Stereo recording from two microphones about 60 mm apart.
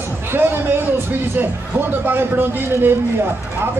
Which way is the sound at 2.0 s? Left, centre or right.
Right.